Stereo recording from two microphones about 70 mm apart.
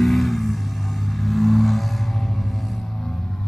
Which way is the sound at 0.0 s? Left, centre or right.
Centre.